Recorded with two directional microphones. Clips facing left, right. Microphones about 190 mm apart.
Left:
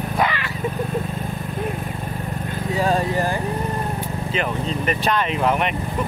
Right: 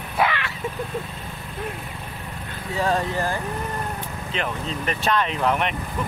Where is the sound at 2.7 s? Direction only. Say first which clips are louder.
Left 2 dB; 15° left (ahead or behind).